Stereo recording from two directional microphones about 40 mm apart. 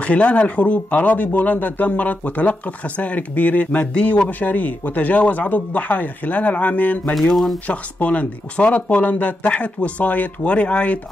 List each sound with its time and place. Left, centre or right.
0.0 s speech: left
7.2 s speech: centre
7.6 s speech: left